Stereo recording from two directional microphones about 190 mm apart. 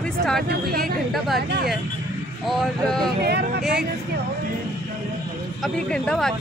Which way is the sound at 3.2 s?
55° right (ahead or behind).